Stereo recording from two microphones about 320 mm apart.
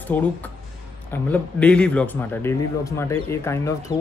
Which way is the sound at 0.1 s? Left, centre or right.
Centre.